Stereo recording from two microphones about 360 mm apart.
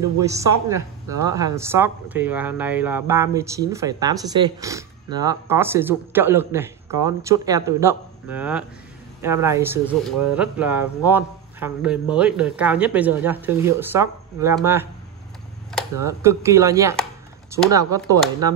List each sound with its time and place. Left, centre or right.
0.2 s speech: centre